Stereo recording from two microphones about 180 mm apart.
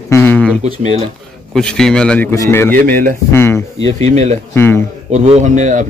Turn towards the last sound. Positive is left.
turn(degrees=-45)  # may be behind; listen again after turning